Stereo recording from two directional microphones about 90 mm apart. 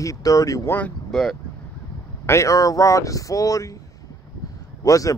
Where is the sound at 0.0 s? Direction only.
40° left (ahead or behind).